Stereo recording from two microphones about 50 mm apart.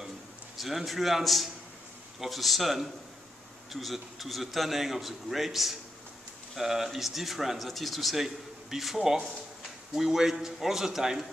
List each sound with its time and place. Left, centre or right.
0.6 s a man's voice: centre